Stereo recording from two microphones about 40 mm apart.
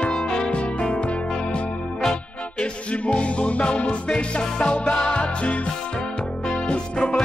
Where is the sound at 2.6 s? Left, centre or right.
Left.